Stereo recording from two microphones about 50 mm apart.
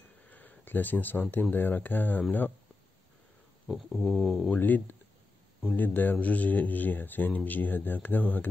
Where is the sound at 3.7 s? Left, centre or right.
Centre.